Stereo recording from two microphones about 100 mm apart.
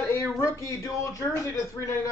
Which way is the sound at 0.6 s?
30° left (ahead or behind).